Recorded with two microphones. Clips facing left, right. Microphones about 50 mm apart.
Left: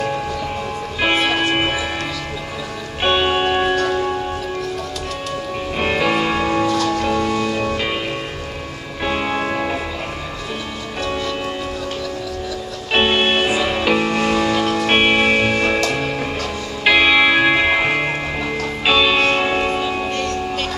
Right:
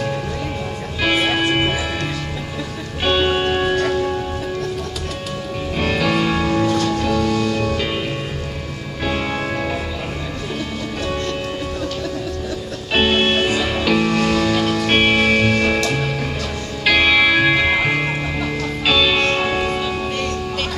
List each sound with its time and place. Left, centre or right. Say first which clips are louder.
1.0 s music: even; centre
3.0 s music: left 1 dB; centre
5.8 s music: left 1 dB; centre
9.0 s music: left 2 dB; centre
11.1 s music: left 1 dB; centre
12.9 s music: even; centre
16.8 s music: left 1 dB; centre